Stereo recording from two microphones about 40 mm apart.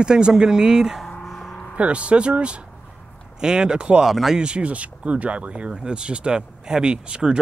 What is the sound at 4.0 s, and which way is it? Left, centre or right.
Speech, centre.